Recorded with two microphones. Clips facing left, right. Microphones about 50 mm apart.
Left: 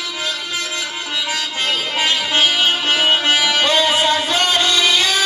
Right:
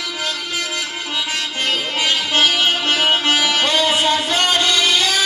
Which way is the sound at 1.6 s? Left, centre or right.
Centre.